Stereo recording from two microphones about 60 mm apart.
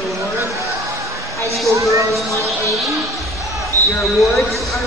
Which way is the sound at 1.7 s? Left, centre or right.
Right.